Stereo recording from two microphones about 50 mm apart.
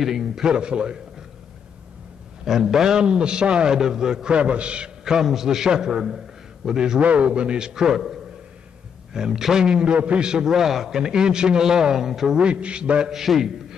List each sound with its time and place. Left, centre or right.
0.0 s a man's voice: centre
2.4 s a man's voice: centre
7.0 s a man's voice: right; by 12.4 s centre
12.4 s a man's voice: right
13.1 s a man's voice: centre